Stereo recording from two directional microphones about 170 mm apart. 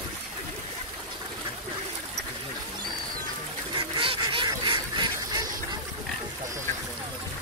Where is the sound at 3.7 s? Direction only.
30° right (ahead or behind).